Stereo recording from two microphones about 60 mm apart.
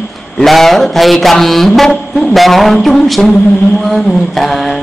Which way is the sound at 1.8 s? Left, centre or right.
Centre.